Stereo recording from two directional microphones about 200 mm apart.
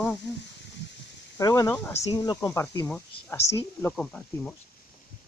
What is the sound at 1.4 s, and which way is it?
Speech, 15° left (ahead or behind).